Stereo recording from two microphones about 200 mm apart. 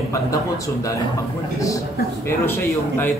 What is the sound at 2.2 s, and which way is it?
Speech, 10° left (ahead or behind).